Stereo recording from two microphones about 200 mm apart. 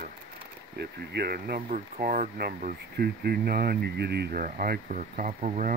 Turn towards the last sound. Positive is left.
turn(degrees=-35)  # may be behind; listen again after turning